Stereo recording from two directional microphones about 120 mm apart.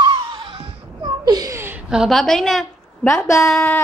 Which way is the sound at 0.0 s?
45° right (ahead or behind).